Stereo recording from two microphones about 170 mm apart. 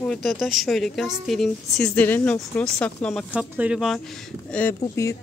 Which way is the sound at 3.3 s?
5° right (ahead or behind).